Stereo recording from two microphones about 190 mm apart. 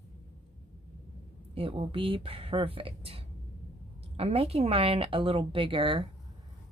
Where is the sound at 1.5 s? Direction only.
30° right (ahead or behind).